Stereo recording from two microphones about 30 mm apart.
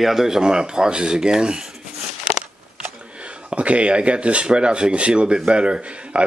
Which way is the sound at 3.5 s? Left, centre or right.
Right.